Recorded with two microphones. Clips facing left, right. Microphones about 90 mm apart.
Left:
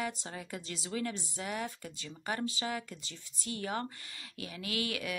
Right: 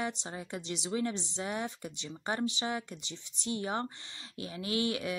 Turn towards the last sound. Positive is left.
turn(degrees=-25)  # may be behind; listen again after turning